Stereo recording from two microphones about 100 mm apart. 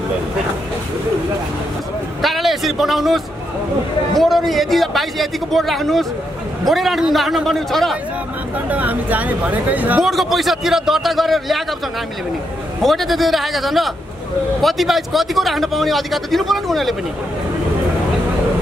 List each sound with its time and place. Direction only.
2.2 s a sound: centre (ahead or behind)
4.1 s a man's voice: centre (ahead or behind)
8.6 s speech: 15° right (ahead or behind)
10.0 s a man's voice: centre (ahead or behind)
12.8 s a man's voice: centre (ahead or behind)